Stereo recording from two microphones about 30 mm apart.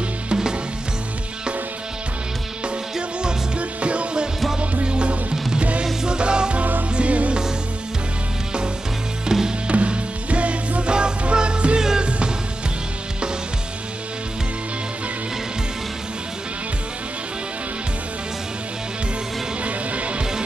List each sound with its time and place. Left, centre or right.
0.3 s music: right
3.5 s music: right
7.0 s music: right
9.2 s music: centre
9.7 s music: right
19.6 s music: right